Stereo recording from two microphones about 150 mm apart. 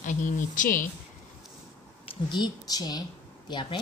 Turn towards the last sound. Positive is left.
turn(degrees=35)  # may be behind; listen again after turning